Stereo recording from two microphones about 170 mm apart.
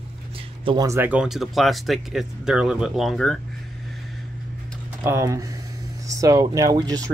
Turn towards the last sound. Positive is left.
turn(degrees=-20)  # may be behind; listen again after turning